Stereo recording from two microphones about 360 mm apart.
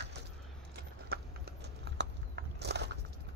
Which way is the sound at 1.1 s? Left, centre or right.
Right.